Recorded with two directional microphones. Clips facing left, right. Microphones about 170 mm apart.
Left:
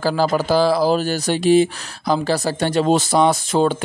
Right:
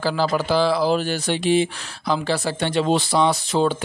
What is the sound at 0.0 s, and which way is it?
Speech, 45° left (ahead or behind).